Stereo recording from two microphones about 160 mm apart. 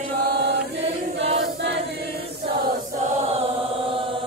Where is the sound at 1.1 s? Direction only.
40° right (ahead or behind).